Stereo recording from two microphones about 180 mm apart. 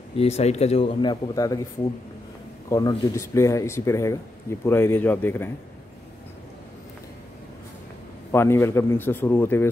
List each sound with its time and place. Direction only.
0.2 s speech: 35° left (ahead or behind)
1.3 s speech: 20° left (ahead or behind)
2.7 s speech: 20° left (ahead or behind)
8.3 s speech: 15° left (ahead or behind)